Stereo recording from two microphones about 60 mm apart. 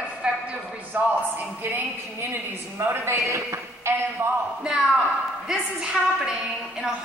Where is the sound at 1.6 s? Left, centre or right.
Right.